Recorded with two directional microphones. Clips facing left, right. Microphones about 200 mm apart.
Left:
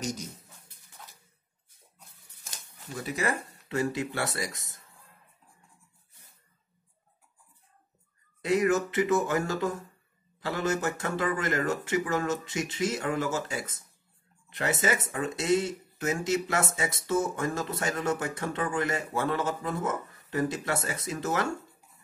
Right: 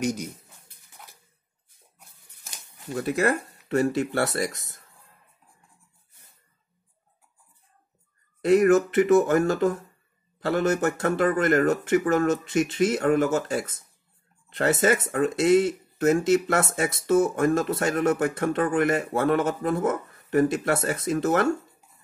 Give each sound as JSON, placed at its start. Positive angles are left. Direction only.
{"t": 2.9, "sound": "speech", "side_deg": -60}
{"t": 8.5, "sound": "speech", "side_deg": -60}